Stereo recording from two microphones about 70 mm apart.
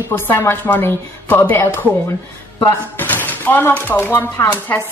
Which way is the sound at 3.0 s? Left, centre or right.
Left.